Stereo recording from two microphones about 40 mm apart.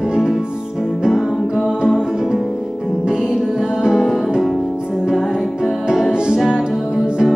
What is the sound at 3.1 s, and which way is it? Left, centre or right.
Music, centre.